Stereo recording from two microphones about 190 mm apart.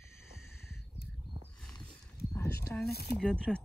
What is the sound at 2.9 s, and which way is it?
Speech, 55° left (ahead or behind).